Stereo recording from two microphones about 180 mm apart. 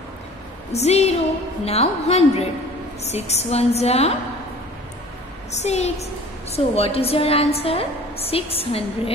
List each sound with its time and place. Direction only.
0.7 s a woman's voice: 35° left (ahead or behind)
5.5 s a woman's voice: 35° left (ahead or behind)